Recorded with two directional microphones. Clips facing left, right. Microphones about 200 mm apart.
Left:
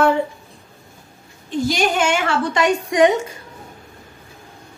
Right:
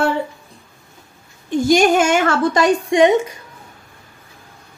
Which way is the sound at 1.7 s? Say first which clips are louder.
Right 7 dB; 45° right (ahead or behind).